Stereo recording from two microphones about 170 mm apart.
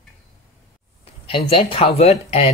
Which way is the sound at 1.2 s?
35° left (ahead or behind).